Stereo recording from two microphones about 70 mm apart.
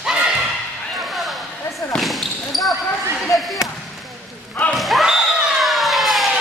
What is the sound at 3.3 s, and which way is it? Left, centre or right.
Basketball bounce, left.